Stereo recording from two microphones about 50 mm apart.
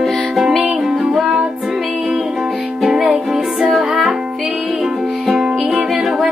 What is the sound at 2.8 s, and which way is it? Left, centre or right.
Music, centre.